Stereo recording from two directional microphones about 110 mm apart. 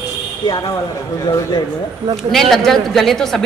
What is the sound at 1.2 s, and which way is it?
Speech, 35° left (ahead or behind).